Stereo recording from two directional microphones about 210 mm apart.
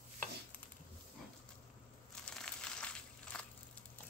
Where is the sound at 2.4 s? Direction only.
5° left (ahead or behind).